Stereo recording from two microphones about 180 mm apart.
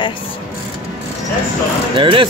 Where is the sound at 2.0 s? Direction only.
30° right (ahead or behind).